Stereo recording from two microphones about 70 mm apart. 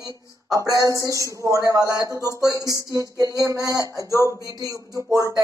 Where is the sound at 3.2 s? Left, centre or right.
Left.